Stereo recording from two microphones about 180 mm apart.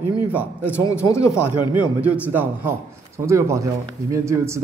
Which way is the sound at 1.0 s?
15° left (ahead or behind).